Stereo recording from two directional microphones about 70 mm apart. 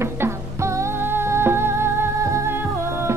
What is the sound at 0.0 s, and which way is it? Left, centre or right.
Music, right.